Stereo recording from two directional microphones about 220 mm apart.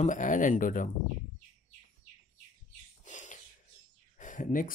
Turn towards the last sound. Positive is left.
turn(degrees=35)  # may be behind; listen again after turning